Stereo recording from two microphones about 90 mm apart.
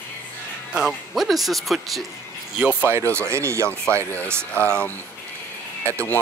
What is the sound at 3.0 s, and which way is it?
Speech, 20° left (ahead or behind).